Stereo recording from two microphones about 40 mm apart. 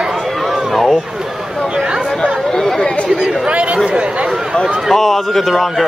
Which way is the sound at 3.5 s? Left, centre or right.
Right.